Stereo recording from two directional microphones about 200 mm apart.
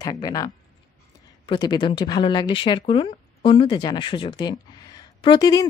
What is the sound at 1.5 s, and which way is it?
Speech, 20° left (ahead or behind).